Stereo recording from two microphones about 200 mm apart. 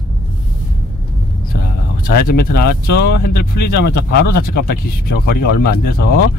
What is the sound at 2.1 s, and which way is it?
Speech, 50° left (ahead or behind).